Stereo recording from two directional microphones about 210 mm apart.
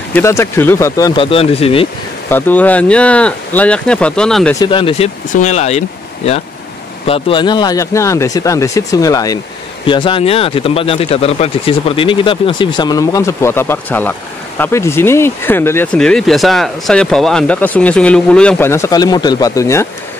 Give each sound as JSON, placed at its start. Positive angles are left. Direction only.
{"t": 0.1, "sound": "speech", "side_deg": 15}
{"t": 2.2, "sound": "speech", "side_deg": 10}
{"t": 4.6, "sound": "speech", "side_deg": 25}